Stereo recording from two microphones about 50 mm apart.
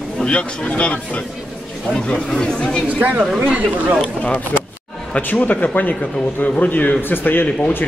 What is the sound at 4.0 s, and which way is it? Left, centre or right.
Speech, left.